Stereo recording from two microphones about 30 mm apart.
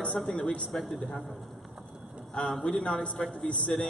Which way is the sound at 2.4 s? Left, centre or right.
Left.